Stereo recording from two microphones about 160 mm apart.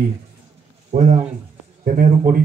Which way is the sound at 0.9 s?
50° right (ahead or behind).